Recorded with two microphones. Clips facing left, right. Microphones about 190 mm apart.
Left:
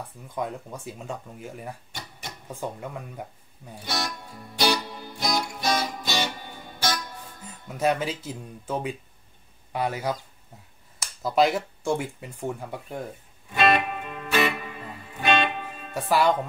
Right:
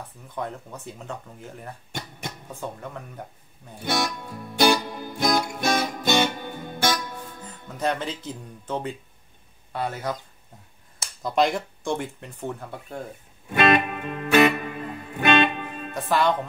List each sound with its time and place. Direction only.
0.3 s speech: 10° left (ahead or behind)
1.9 s guitar: 55° right (ahead or behind)
2.5 s speech: 10° left (ahead or behind)
3.8 s music: 55° right (ahead or behind)
7.7 s speech: 10° left (ahead or behind)
11.2 s speech: 5° left (ahead or behind)
13.5 s music: 55° right (ahead or behind)
15.9 s speech: 10° left (ahead or behind)